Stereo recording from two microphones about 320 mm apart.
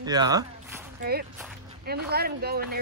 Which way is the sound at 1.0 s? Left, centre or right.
Right.